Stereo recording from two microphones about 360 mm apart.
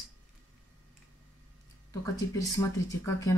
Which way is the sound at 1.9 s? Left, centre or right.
Centre.